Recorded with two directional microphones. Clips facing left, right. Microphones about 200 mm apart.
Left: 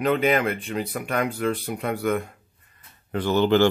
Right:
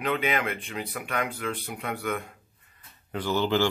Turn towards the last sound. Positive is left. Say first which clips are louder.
# left 6 dB
turn(degrees=60)  # may be behind; listen again after turning